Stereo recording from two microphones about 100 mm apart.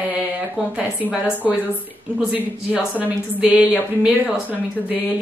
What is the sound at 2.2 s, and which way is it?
Speech, 10° right (ahead or behind).